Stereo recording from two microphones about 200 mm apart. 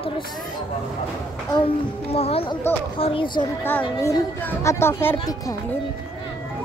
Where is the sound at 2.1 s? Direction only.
30° left (ahead or behind).